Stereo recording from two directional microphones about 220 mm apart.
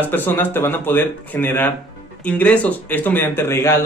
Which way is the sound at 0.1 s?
10° left (ahead or behind).